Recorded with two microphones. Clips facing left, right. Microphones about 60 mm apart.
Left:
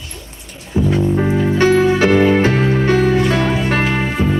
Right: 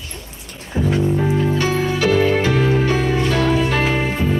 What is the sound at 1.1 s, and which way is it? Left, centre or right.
Music, left.